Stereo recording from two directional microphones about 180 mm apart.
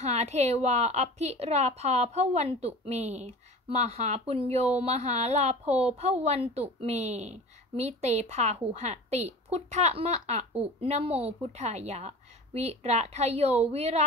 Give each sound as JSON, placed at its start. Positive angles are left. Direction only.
{"t": 0.0, "sound": "a woman's voice", "side_deg": -40}